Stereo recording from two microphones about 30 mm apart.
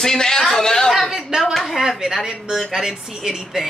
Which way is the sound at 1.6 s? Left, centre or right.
Centre.